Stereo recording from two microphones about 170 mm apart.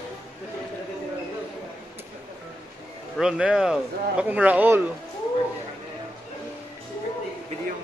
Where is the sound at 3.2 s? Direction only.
5° right (ahead or behind).